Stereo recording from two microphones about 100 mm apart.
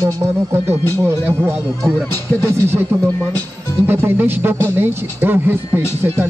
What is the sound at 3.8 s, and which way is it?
Speech, 20° right (ahead or behind).